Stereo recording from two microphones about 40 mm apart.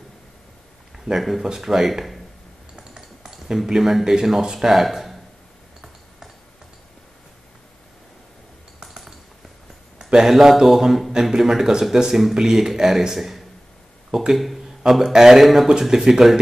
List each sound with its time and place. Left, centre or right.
0.9 s a man's voice: centre
2.7 s cutlery: right
3.0 s speech: centre
4.7 s speech: centre
8.8 s a sound: centre
9.9 s a man's voice: centre